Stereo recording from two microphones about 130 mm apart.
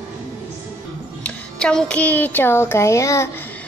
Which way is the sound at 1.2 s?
5° left (ahead or behind).